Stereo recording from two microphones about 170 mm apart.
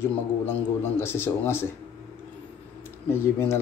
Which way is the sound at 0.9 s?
15° left (ahead or behind).